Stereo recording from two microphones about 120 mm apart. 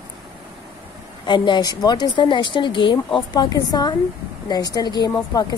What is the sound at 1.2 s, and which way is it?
A woman's voice, 40° left (ahead or behind).